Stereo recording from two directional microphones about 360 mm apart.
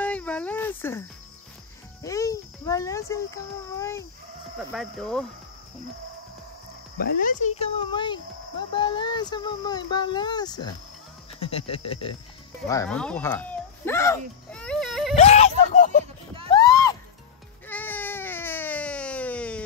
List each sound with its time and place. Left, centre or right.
0.0 s a sound: centre
2.0 s a sound: centre
4.6 s speech: centre
7.0 s speech: left; by 15.1 s centre
15.1 s whimper: centre
16.4 s music: centre
17.6 s baby cry: centre